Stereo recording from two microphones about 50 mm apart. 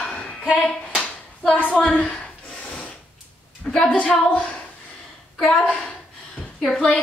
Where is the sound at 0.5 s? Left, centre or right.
Centre.